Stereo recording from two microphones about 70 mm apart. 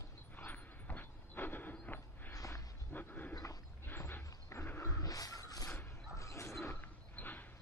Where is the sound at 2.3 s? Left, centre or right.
Left.